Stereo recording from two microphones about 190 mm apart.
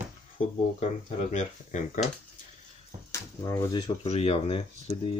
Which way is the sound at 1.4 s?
40° left (ahead or behind).